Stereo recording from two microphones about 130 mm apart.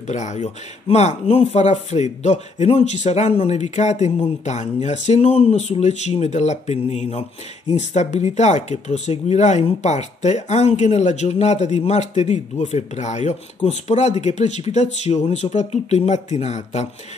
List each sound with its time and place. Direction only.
0.1 s speech: 65° left (ahead or behind)